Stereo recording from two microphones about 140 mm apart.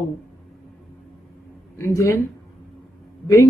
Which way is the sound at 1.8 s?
20° left (ahead or behind).